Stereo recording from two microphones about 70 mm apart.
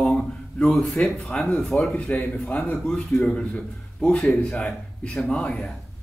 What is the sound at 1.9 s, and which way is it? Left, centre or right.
Speech, centre.